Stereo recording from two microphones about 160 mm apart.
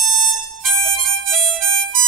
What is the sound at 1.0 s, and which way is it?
Harmonica, centre (ahead or behind).